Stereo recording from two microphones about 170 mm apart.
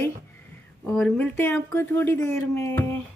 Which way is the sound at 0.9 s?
10° left (ahead or behind).